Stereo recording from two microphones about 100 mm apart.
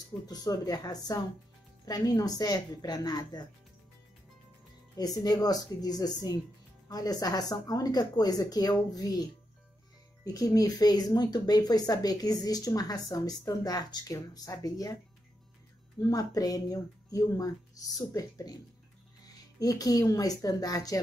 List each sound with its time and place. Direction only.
0.3 s speech: 40° left (ahead or behind)
5.2 s speech: 40° left (ahead or behind)
16.1 s speech: 35° left (ahead or behind)
19.6 s speech: 35° left (ahead or behind)